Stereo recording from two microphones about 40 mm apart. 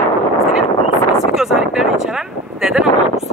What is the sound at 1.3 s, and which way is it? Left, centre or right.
Speech, centre.